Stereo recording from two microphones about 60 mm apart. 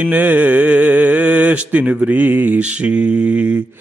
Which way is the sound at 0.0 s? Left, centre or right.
Right.